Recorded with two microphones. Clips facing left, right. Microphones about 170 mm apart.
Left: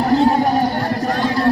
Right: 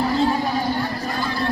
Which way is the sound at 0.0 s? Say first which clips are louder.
Left 6 dB; 65° left (ahead or behind).